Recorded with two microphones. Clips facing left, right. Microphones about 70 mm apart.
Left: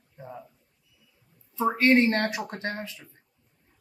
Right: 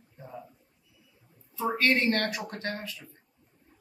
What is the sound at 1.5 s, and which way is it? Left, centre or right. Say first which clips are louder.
Speech: left 5 dB; left.